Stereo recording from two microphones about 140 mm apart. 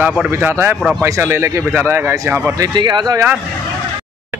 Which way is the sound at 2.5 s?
30° right (ahead or behind).